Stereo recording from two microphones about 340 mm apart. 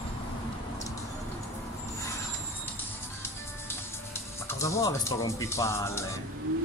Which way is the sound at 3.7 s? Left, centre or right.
Centre.